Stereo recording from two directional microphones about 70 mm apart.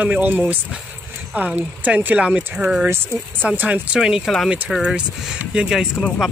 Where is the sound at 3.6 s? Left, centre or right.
Centre.